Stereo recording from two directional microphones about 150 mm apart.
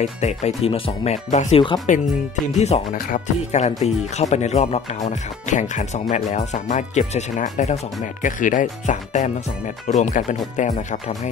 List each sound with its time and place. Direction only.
0.0 s speech: 50° left (ahead or behind)